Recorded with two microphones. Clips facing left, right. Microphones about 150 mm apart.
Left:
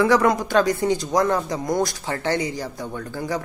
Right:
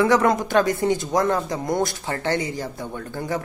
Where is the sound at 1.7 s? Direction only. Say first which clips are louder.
Left 1 dB; 25° right (ahead or behind).